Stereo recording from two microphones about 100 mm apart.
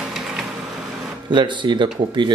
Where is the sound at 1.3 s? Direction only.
50° right (ahead or behind).